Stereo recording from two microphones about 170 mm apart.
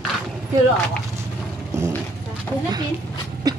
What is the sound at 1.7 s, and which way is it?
Clip-clop, 20° right (ahead or behind).